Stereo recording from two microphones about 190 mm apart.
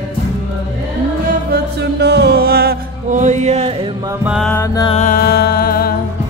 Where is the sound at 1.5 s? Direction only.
60° right (ahead or behind).